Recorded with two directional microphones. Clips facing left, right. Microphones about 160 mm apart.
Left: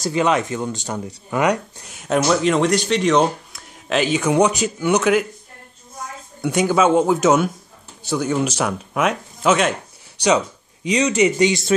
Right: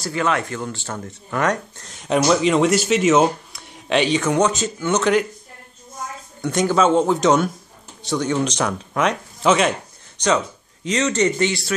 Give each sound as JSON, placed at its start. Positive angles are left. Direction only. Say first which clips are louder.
{"t": 0.0, "sound": "speech", "louder": "left 3 dB", "side_deg": 20}
{"t": 6.4, "sound": "speech", "louder": "left 1 dB", "side_deg": 10}
{"t": 10.1, "sound": "speech", "louder": "left 2 dB", "side_deg": 15}